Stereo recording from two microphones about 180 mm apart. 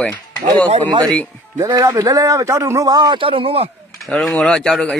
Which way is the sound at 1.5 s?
15° right (ahead or behind).